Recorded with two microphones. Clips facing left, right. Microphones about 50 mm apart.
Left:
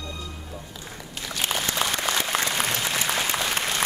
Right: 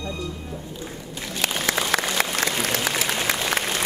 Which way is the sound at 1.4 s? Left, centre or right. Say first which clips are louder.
Right 2 dB; right.